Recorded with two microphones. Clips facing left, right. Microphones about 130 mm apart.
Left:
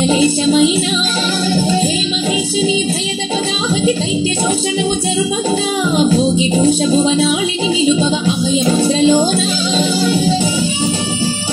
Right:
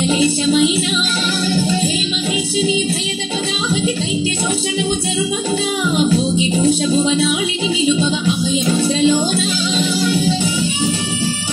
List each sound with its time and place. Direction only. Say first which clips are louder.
0.0 s music: left 3 dB; 35° left (ahead or behind)
5.9 s music: left 3 dB; 35° left (ahead or behind)